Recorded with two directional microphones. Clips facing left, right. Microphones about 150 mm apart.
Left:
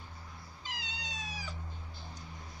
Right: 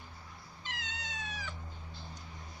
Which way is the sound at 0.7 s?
35° left (ahead or behind).